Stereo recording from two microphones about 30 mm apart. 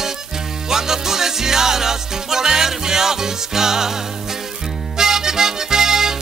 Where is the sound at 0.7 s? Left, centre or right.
Centre.